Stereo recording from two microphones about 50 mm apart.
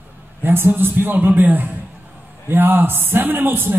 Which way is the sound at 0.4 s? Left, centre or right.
Right.